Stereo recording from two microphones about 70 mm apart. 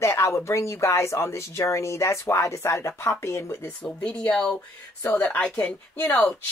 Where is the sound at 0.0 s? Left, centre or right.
Left.